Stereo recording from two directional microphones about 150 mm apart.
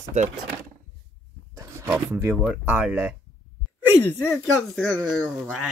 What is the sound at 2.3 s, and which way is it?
Speech, centre (ahead or behind).